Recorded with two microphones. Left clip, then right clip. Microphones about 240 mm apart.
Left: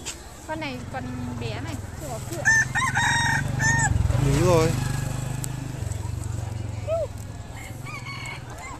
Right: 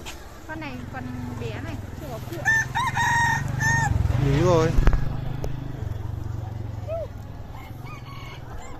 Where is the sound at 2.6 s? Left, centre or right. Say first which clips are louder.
Left 1 dB; right.